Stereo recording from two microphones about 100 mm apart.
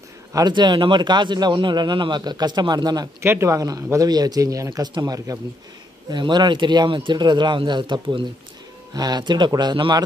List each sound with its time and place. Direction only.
0.3 s a man's voice: 45° right (ahead or behind)
3.2 s speech: 25° right (ahead or behind)
6.0 s a man's voice: 45° right (ahead or behind)